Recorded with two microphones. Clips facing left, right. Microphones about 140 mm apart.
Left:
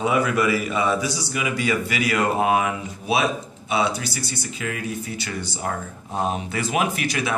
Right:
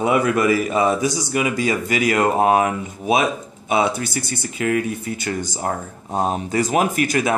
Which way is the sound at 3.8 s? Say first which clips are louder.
Right 1 dB; 50° right (ahead or behind).